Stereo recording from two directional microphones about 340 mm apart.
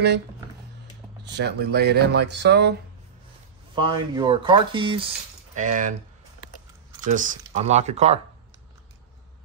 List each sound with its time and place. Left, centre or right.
1.2 s speech: right
3.7 s speech: centre
7.0 s speech: right